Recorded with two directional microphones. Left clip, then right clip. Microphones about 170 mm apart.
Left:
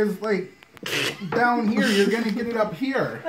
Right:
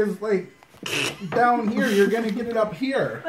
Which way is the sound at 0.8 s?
75° right (ahead or behind).